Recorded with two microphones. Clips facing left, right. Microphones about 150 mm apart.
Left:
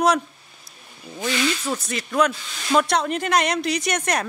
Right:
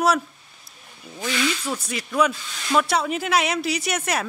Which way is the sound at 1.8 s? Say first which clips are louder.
Even; 10° right (ahead or behind).